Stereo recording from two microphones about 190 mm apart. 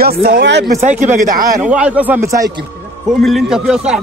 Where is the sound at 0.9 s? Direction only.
40° right (ahead or behind).